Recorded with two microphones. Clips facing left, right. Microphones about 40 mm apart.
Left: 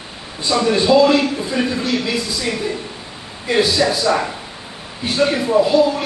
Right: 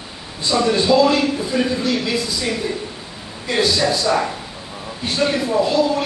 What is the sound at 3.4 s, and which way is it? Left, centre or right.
A man's voice, centre.